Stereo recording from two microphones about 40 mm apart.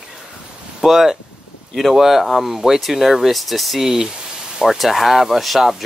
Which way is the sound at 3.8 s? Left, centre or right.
Centre.